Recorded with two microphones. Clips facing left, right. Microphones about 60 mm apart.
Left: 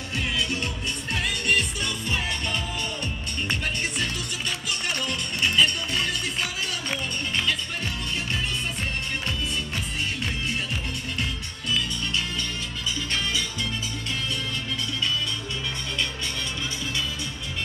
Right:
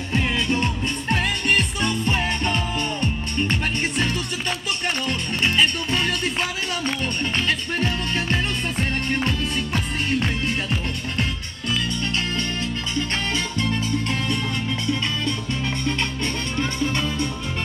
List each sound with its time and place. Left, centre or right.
0.1 s music: right
7.3 s music: right
12.0 s music: right
16.5 s music: right